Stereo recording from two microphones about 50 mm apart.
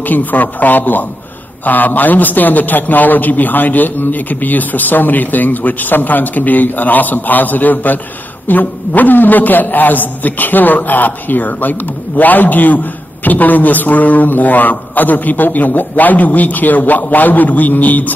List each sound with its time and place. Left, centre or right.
0.0 s a man's voice: left